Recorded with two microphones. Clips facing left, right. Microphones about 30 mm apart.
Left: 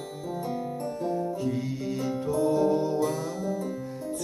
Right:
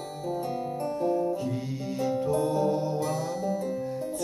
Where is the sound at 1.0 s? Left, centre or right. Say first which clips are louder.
Right 2 dB; centre.